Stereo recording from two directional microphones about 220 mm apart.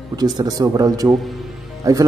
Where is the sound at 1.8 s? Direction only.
15° right (ahead or behind).